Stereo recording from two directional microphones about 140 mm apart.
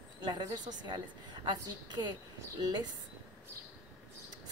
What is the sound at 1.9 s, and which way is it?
Speech, 30° right (ahead or behind).